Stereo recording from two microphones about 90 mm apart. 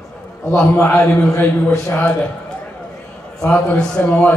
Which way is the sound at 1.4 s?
25° left (ahead or behind).